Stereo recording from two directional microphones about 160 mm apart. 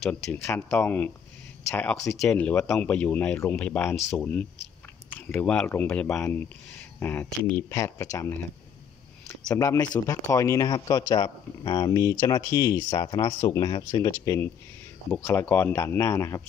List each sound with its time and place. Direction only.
0.0 s speech: 10° left (ahead or behind)
9.5 s a man's voice: 20° left (ahead or behind)